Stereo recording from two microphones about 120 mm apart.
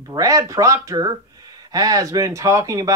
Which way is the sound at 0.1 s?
30° right (ahead or behind).